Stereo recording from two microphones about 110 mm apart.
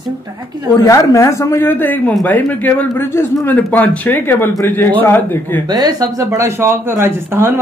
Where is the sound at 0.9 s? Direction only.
30° left (ahead or behind).